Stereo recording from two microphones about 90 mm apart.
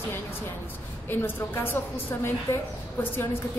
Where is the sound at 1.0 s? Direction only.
25° left (ahead or behind).